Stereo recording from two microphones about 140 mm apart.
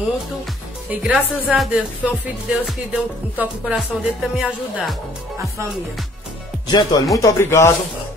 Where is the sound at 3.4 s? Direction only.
10° right (ahead or behind).